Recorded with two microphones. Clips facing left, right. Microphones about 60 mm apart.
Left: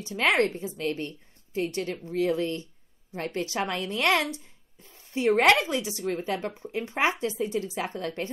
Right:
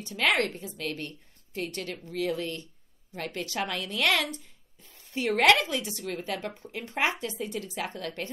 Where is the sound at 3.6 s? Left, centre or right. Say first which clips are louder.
Even; left.